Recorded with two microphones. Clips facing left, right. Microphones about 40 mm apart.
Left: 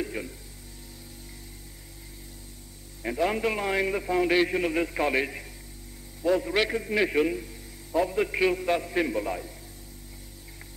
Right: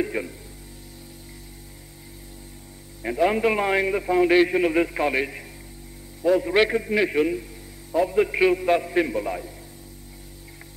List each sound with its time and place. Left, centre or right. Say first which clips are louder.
0.0 s speech: right 6 dB; right
3.0 s a man's voice: right 5 dB; centre